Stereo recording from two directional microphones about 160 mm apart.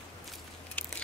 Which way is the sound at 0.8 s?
10° left (ahead or behind).